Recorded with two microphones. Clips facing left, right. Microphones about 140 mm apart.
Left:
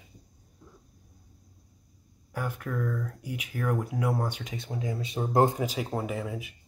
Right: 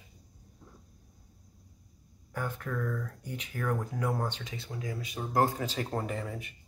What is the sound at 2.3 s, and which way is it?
Speech, 10° left (ahead or behind).